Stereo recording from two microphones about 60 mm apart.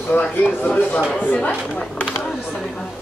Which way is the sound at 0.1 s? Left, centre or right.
Left.